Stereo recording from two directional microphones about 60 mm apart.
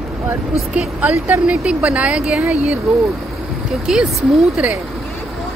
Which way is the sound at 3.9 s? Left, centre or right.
Centre.